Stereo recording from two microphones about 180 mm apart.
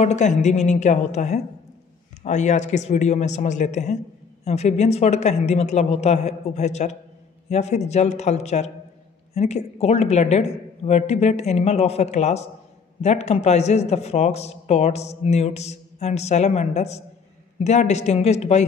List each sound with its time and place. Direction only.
0.0 s speech: 40° left (ahead or behind)